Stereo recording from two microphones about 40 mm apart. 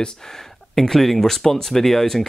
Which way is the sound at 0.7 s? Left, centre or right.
Centre.